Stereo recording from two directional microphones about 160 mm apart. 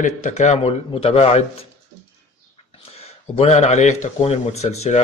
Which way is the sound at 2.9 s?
40° left (ahead or behind).